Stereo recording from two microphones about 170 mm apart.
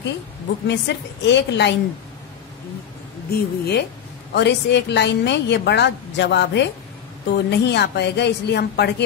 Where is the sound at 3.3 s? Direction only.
65° left (ahead or behind).